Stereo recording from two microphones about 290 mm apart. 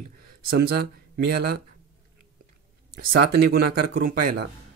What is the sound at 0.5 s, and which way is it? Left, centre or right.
Speech, right.